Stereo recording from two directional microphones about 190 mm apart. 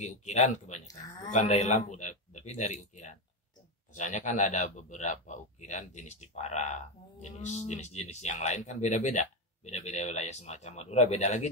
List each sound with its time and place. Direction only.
0.0 s speech: 40° left (ahead or behind)